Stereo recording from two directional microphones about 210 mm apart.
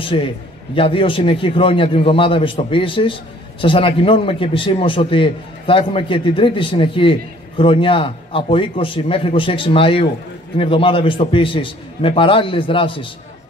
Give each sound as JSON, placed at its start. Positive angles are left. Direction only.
{"t": 0.1, "sound": "a man's voice", "side_deg": 25}